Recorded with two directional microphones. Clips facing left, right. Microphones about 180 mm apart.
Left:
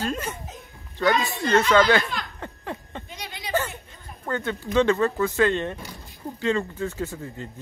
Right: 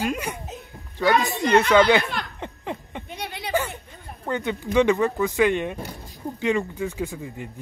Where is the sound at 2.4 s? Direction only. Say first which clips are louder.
Right 2 dB; 15° right (ahead or behind).